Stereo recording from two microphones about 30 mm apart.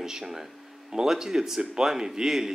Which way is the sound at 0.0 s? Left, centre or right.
Centre.